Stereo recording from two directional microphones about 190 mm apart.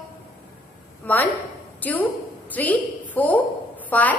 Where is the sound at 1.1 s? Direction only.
10° left (ahead or behind).